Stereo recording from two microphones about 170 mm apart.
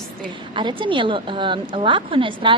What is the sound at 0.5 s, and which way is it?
A woman's voice, 30° right (ahead or behind).